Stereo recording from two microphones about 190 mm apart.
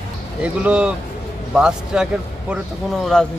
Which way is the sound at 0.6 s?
5° right (ahead or behind).